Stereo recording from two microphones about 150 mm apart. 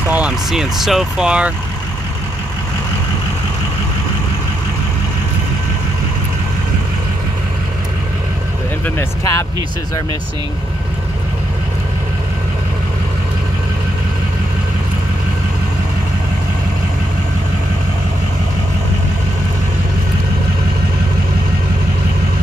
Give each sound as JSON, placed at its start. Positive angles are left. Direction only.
{"t": 0.1, "sound": "speech", "side_deg": -5}
{"t": 8.8, "sound": "speech", "side_deg": 20}